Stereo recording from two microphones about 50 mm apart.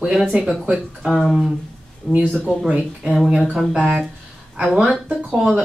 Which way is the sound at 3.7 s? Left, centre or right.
Centre.